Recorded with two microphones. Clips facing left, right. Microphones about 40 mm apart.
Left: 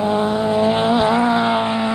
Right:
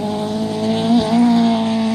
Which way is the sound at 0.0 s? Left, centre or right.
Left.